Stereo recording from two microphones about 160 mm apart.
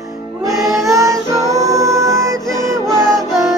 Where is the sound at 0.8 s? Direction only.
20° right (ahead or behind).